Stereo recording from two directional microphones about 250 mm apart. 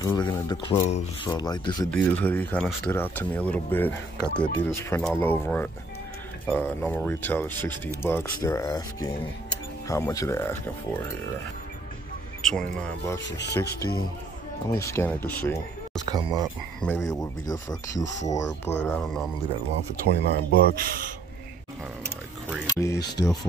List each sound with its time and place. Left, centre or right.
0.0 s speech: centre
12.4 s speech: centre
13.2 s speech: left
13.6 s speech: centre
20.1 s speech: right
22.8 s speech: centre